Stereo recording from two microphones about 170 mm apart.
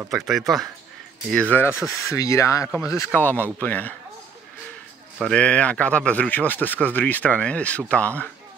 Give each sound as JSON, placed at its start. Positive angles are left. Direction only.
{"t": 0.1, "sound": "speech", "side_deg": 0}
{"t": 5.2, "sound": "speech", "side_deg": 5}